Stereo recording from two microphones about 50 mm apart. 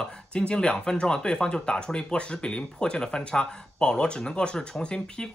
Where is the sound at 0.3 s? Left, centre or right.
Centre.